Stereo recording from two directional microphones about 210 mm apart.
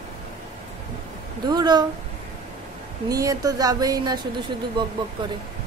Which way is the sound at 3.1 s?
15° right (ahead or behind).